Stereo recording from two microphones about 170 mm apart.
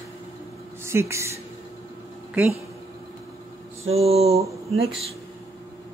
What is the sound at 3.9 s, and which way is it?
Speech, 35° right (ahead or behind).